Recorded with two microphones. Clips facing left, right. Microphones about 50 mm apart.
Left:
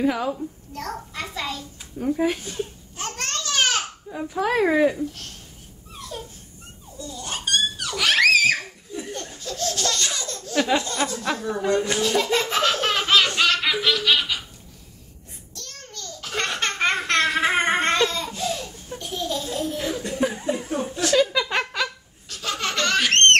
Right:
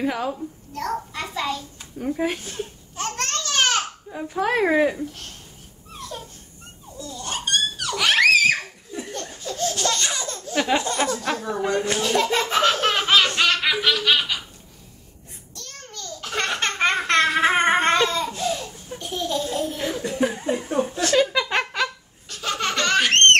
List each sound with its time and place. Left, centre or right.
0.0 s a child's voice: centre
3.0 s babbling: centre
4.3 s speech: centre
7.0 s a sound: centre
9.4 s laughter: centre
11.0 s speech: centre
12.0 s laughter: centre
15.5 s babbling: centre
21.1 s laughter: centre